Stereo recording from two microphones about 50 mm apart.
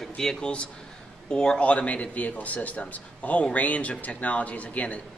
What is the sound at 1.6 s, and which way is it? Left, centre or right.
A man's voice, left.